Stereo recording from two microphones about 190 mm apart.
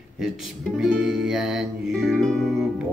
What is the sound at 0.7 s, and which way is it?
Music, centre (ahead or behind).